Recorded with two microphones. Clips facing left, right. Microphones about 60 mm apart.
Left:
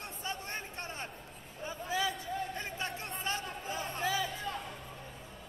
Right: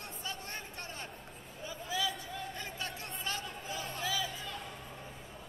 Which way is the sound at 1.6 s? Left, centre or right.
Left.